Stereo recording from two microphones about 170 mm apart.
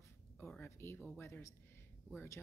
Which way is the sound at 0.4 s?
10° left (ahead or behind).